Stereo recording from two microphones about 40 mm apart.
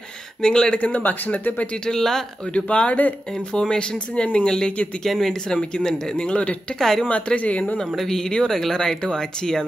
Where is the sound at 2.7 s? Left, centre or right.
Left.